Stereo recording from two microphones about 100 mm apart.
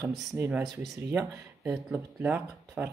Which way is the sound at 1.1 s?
25° right (ahead or behind).